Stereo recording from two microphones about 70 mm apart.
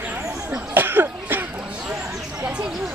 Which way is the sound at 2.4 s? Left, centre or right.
Centre.